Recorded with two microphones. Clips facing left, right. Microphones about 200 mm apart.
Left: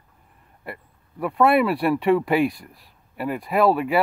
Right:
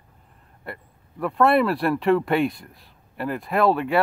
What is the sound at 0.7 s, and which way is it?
Speech, 5° left (ahead or behind).